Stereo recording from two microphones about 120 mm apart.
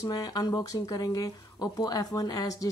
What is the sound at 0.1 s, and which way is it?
Speech, 35° left (ahead or behind).